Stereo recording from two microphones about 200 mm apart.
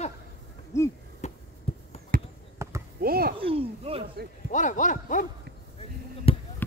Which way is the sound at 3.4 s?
30° right (ahead or behind).